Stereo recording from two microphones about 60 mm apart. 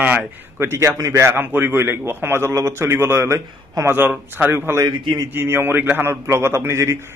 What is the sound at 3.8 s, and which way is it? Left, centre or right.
A man's voice, right.